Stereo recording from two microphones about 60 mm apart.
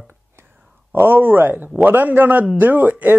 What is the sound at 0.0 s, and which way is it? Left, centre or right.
Whispering, right.